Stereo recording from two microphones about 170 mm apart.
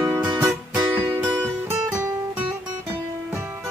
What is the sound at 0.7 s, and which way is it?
Music, 10° right (ahead or behind).